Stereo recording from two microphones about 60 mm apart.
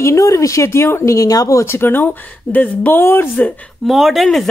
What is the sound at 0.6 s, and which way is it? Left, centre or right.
Speech, left.